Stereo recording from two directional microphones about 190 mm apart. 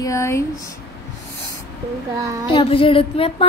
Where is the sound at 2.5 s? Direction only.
30° left (ahead or behind).